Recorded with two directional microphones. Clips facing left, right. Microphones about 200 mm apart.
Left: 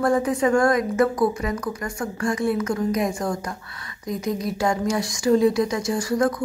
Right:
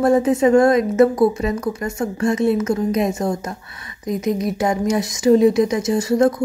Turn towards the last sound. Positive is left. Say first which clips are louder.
# right 5 dB
turn(degrees=-25)  # may be behind; listen again after turning